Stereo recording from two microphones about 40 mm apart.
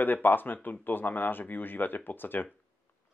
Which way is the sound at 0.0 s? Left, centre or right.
Left.